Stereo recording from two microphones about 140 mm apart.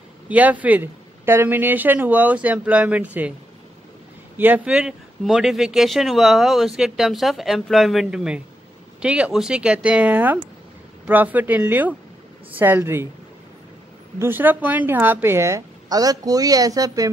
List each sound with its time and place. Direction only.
0.3 s speech: 10° right (ahead or behind)
4.4 s speech: 10° right (ahead or behind)
14.1 s a woman's voice: 15° right (ahead or behind)